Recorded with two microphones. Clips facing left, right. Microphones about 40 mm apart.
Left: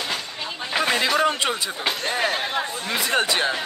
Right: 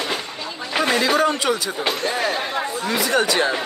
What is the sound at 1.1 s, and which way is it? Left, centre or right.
Speech, left.